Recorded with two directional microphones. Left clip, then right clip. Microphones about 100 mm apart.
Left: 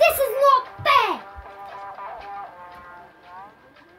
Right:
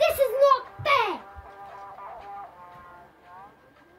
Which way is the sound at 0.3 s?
50° left (ahead or behind).